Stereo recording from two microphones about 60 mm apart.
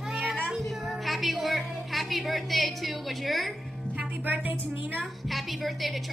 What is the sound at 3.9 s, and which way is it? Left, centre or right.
Music, right.